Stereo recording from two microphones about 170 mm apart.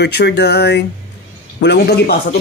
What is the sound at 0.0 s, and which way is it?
Speech, 75° left (ahead or behind).